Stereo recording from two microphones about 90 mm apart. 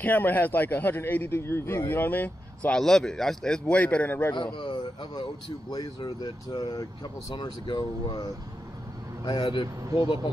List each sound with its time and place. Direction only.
0.0 s a man's voice: 20° left (ahead or behind)
2.7 s a man's voice: 5° left (ahead or behind)
4.6 s speech: 70° left (ahead or behind)
5.7 s speech: 50° left (ahead or behind)
9.2 s speech: 55° left (ahead or behind)